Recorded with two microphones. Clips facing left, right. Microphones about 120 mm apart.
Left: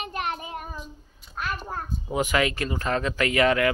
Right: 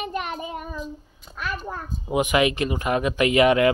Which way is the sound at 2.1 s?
20° right (ahead or behind).